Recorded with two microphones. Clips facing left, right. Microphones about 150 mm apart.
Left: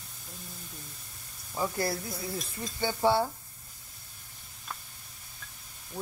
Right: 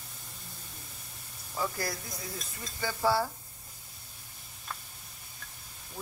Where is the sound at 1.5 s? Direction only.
25° left (ahead or behind).